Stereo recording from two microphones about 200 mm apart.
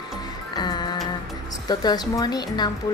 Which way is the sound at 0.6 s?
20° left (ahead or behind).